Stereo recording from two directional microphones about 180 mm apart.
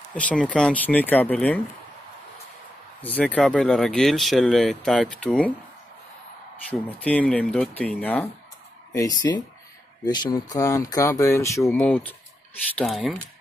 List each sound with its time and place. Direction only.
0.1 s speech: 5° left (ahead or behind)
3.0 s speech: 10° left (ahead or behind)
6.7 s speech: 10° left (ahead or behind)
8.9 s speech: 20° left (ahead or behind); by 13.2 s centre (ahead or behind)